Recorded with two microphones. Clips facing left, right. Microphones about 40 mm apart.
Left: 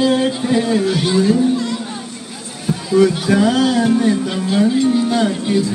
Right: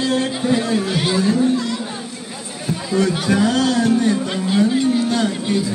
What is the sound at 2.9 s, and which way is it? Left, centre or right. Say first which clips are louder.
Speech: left 4 dB; centre.